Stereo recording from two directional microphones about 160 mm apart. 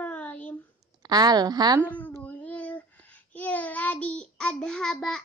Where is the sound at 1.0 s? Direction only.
25° right (ahead or behind).